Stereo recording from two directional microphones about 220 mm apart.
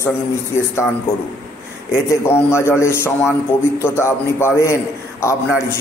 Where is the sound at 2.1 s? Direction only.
10° left (ahead or behind).